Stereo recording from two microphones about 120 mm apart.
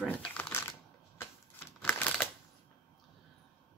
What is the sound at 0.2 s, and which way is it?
Crumpling, 15° left (ahead or behind).